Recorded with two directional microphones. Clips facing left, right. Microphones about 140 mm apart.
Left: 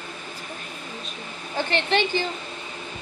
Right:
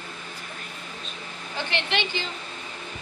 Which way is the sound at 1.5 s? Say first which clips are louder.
Left 5 dB; 50° left (ahead or behind).